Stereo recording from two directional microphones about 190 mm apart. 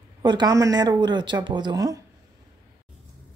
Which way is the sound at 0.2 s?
20° right (ahead or behind).